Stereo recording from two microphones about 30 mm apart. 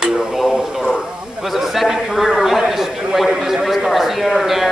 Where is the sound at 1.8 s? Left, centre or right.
Centre.